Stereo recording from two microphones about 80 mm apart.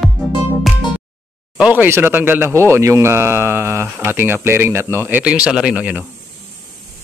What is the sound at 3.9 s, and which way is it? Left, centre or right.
Speech, right.